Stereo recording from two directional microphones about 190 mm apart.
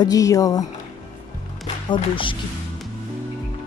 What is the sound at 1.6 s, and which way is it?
Music, 25° left (ahead or behind).